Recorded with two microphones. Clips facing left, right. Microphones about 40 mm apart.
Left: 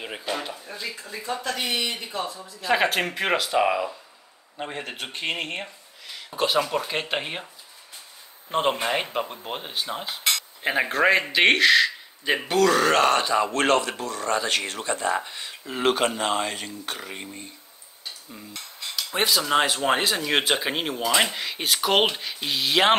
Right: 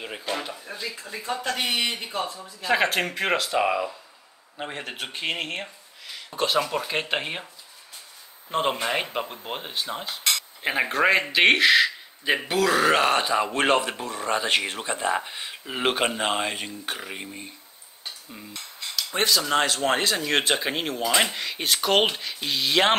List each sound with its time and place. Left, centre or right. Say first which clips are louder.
0.0 s speech: even; centre
1.4 s a man's voice: right 2 dB; right
2.6 s speech: even; centre
8.5 s speech: left 1 dB; centre
19.1 s speech: left 1 dB; centre